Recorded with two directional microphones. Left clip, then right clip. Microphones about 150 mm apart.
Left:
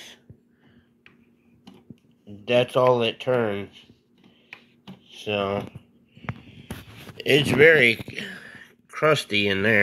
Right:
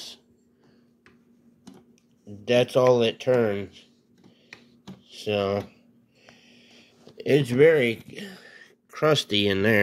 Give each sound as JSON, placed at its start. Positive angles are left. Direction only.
{"t": 2.2, "sound": "speech", "side_deg": -35}
{"t": 5.1, "sound": "speech", "side_deg": -35}
{"t": 6.4, "sound": "a sound", "side_deg": -20}
{"t": 7.2, "sound": "speech", "side_deg": -20}
{"t": 8.1, "sound": "whispering", "side_deg": -30}
{"t": 8.6, "sound": "speech", "side_deg": -35}